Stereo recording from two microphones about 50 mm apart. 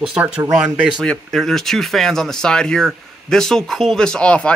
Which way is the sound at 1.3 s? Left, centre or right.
Centre.